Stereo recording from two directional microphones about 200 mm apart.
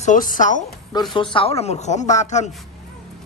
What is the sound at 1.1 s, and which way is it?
Speech, 25° left (ahead or behind).